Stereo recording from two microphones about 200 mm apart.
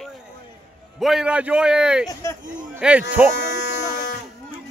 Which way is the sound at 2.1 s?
15° left (ahead or behind).